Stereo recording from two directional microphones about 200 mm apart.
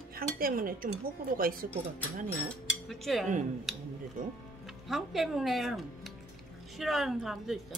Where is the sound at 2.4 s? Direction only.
Centre (ahead or behind).